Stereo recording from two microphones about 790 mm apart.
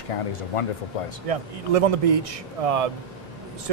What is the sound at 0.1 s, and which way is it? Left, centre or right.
Speech, left.